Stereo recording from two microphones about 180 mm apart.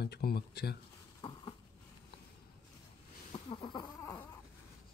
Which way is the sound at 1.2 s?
30° left (ahead or behind).